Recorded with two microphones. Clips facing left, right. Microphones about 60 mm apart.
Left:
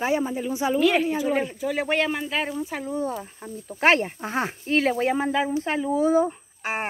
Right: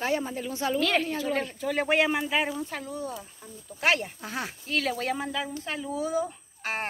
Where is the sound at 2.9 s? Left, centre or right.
Left.